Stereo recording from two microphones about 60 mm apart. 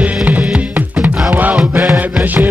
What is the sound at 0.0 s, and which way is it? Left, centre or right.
Music, right.